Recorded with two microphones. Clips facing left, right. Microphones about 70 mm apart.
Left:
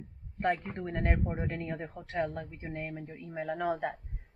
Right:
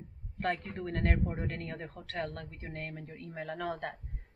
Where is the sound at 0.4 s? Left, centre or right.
Centre.